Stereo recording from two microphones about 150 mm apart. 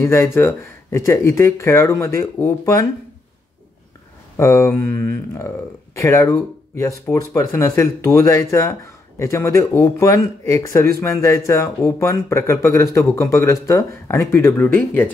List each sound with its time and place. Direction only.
0.0 s speech: 15° left (ahead or behind)
4.4 s speech: 20° left (ahead or behind)